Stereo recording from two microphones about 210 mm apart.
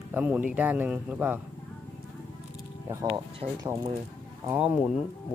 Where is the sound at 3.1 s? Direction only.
25° right (ahead or behind).